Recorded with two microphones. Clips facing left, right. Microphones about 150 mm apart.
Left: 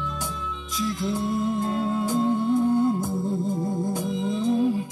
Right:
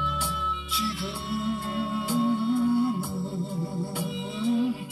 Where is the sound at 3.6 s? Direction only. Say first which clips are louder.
Left 6 dB; 15° left (ahead or behind).